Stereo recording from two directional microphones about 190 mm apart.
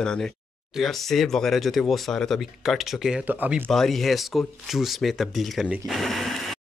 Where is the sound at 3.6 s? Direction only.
Centre (ahead or behind).